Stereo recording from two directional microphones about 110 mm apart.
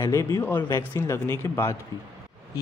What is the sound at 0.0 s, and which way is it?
Speech, 30° left (ahead or behind).